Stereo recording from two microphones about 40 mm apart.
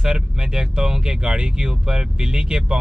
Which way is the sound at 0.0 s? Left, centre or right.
Centre.